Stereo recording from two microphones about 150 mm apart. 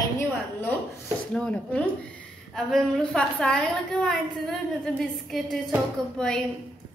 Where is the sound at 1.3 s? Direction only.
5° left (ahead or behind).